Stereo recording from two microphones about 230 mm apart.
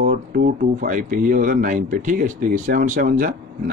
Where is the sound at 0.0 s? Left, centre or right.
Right.